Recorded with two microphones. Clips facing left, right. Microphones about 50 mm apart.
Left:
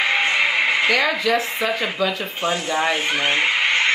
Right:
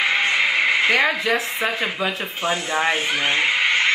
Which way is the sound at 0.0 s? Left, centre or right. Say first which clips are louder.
Even; centre.